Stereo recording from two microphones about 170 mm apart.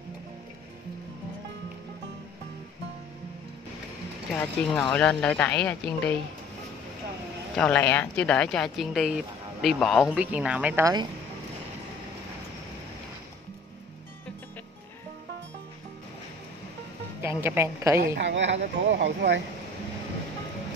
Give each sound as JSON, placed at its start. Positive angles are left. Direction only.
{"t": 4.4, "sound": "speech", "side_deg": 10}
{"t": 7.5, "sound": "speech", "side_deg": 5}
{"t": 17.2, "sound": "a woman's voice", "side_deg": -15}
{"t": 18.0, "sound": "speech", "side_deg": -80}